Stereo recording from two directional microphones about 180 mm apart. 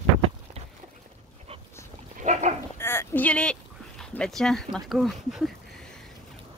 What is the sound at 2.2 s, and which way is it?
Goat, 45° right (ahead or behind).